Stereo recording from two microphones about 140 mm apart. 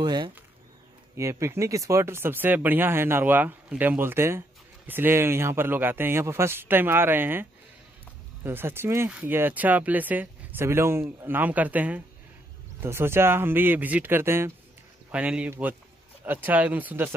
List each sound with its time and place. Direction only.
0.0 s speech: 30° right (ahead or behind)
1.1 s speech: 20° right (ahead or behind)
8.5 s speech: 15° right (ahead or behind)